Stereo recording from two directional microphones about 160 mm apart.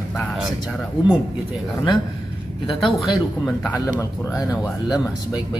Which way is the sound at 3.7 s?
20° left (ahead or behind).